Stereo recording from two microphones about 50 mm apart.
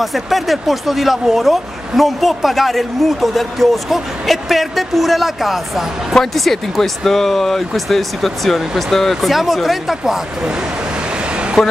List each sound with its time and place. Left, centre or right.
0.0 s speech: centre
11.1 s vehicle: right